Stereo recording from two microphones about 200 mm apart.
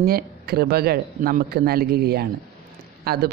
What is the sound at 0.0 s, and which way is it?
Speech, 50° right (ahead or behind).